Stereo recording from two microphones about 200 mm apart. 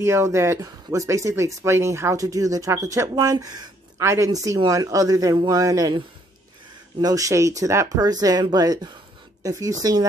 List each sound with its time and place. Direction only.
0.0 s speech: 15° right (ahead or behind)